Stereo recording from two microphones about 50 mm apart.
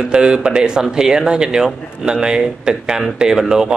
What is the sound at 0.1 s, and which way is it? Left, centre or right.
A man's voice, centre.